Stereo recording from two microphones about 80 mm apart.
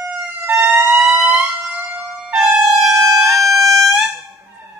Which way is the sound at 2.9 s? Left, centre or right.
Right.